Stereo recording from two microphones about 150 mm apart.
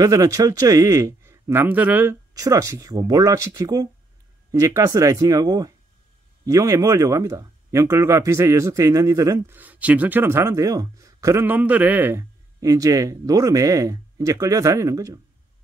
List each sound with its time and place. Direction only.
0.0 s speech: 20° right (ahead or behind)
2.3 s speech: 20° right (ahead or behind)